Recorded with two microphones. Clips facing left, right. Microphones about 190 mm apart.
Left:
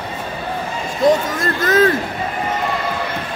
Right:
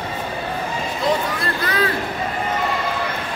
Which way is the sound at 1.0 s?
45° left (ahead or behind).